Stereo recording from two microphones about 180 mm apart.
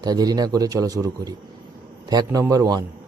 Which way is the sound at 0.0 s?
20° right (ahead or behind).